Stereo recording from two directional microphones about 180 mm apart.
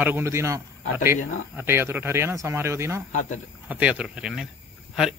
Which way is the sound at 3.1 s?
40° left (ahead or behind).